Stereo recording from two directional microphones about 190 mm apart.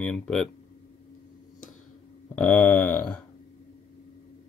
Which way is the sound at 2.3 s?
5° left (ahead or behind).